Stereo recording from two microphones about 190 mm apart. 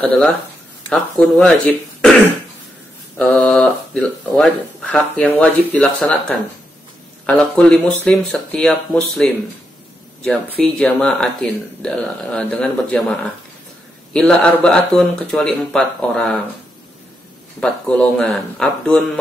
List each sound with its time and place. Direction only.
0.8 s speech: centre (ahead or behind)
3.2 s speech: 5° left (ahead or behind)
17.6 s speech: 5° left (ahead or behind)